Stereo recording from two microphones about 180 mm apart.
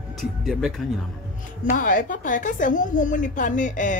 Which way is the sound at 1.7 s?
50° left (ahead or behind).